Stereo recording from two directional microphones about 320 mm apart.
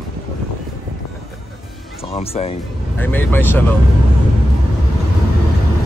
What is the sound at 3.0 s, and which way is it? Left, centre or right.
Speech, centre.